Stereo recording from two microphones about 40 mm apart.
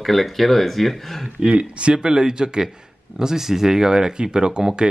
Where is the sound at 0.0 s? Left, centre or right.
Centre.